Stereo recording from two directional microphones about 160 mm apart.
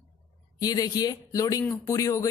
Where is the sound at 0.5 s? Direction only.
25° left (ahead or behind).